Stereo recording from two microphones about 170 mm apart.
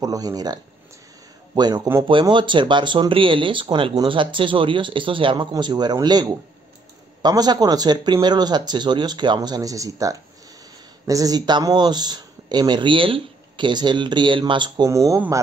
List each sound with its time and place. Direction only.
0.0 s a man's voice: 20° right (ahead or behind)